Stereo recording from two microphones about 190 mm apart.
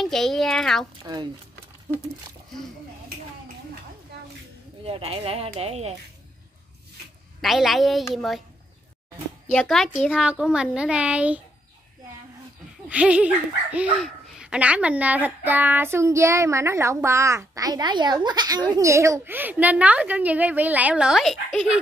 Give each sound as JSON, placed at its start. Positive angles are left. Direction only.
{"t": 0.0, "sound": "a child's voice", "side_deg": 0}
{"t": 4.8, "sound": "speech", "side_deg": -30}
{"t": 7.4, "sound": "a child's voice", "side_deg": 0}
{"t": 9.5, "sound": "a child's voice", "side_deg": 5}
{"t": 10.1, "sound": "a child's voice", "side_deg": -5}
{"t": 12.8, "sound": "a child's voice", "side_deg": -5}